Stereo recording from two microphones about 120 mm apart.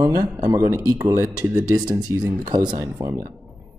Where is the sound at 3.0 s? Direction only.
25° right (ahead or behind).